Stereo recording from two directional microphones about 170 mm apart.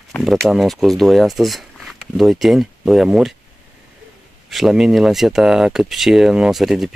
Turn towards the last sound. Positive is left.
turn(degrees=0)  # may be behind; listen again after turning